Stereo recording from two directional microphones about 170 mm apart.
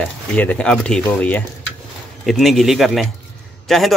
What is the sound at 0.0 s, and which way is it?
Speech, 10° left (ahead or behind).